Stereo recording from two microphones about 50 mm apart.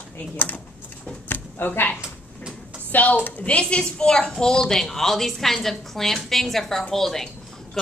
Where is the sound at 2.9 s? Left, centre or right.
Left; by 4.3 s centre.